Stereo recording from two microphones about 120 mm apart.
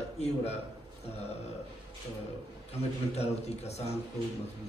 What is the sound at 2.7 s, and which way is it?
A man's voice, 60° left (ahead or behind).